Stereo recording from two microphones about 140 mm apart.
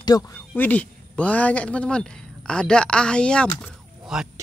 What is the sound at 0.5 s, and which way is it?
Speech, 10° left (ahead or behind).